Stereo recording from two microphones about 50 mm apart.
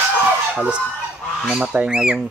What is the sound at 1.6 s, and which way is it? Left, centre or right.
Speech, right.